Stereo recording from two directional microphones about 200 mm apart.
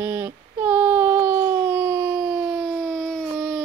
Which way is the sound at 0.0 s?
10° right (ahead or behind).